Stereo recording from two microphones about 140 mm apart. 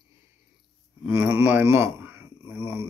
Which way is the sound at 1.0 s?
15° right (ahead or behind).